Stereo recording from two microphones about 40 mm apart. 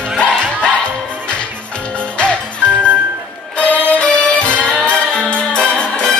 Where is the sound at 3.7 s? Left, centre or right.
Left.